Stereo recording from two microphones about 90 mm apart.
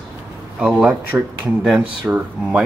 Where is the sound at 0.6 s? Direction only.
10° right (ahead or behind).